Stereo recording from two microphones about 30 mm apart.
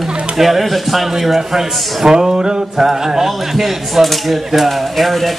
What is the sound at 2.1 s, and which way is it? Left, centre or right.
Male singing, right.